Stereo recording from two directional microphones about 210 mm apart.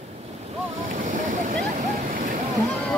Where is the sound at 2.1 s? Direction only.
40° right (ahead or behind).